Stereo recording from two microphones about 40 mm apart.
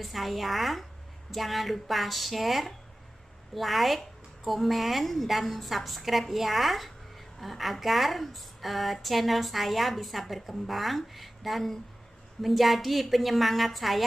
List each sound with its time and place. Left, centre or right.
0.0 s a woman's voice: centre